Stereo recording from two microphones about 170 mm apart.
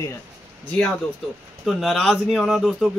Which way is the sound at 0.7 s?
5° left (ahead or behind).